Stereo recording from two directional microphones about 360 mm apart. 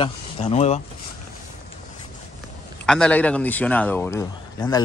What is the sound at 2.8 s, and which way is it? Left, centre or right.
A man's voice, centre.